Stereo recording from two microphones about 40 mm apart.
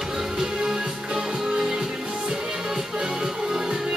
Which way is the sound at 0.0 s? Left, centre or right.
Centre.